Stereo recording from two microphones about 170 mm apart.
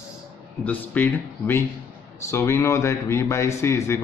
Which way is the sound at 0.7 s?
10° left (ahead or behind).